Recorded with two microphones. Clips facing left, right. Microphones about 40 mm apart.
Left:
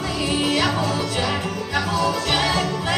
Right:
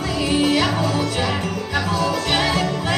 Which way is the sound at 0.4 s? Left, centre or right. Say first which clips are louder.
Right 2 dB; centre.